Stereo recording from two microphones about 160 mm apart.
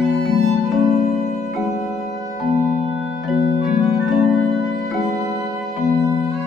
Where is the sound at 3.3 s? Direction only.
5° right (ahead or behind).